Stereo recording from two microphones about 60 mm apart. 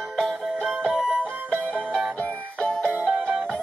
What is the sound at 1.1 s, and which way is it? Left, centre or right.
Music, right.